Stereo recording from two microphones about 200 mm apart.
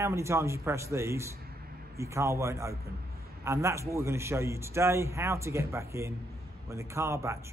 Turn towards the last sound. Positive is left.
turn(degrees=-15)  # may be behind; listen again after turning